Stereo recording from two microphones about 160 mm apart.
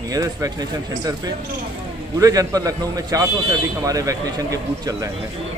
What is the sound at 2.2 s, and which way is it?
A man's voice, 20° right (ahead or behind).